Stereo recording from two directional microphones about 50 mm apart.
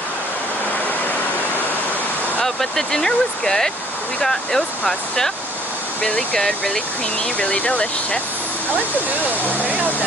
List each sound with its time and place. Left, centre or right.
2.4 s speech: centre
7.3 s speech: left